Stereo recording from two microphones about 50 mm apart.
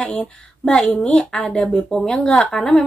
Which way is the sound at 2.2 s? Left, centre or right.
Left.